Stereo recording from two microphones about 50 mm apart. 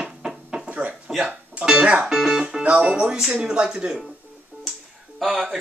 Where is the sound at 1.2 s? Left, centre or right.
Centre.